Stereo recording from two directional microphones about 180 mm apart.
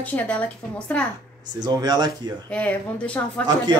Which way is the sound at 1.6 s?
20° right (ahead or behind).